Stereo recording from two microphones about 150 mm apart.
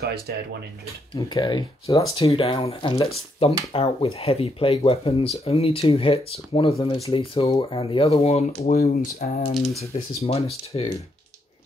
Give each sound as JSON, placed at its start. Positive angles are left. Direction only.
{"t": 0.0, "sound": "speech", "side_deg": -90}
{"t": 1.1, "sound": "speech", "side_deg": 30}
{"t": 9.5, "sound": "speech", "side_deg": 0}
{"t": 10.2, "sound": "speech", "side_deg": 40}